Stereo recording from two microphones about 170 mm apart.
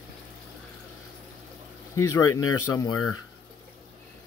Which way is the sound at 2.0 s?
20° left (ahead or behind).